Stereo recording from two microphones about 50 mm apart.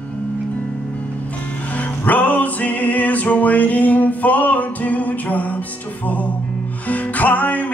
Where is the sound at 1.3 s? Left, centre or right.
Left.